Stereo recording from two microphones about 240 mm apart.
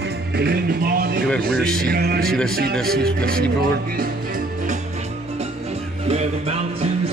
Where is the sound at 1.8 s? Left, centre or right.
Right.